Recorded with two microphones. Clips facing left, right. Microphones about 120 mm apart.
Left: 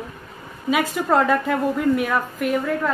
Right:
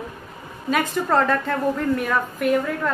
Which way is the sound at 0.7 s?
5° left (ahead or behind).